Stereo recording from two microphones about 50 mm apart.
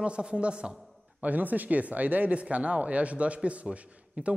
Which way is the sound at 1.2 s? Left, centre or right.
Right.